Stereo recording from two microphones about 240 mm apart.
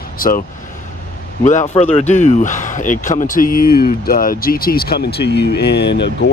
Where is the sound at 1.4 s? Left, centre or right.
Left.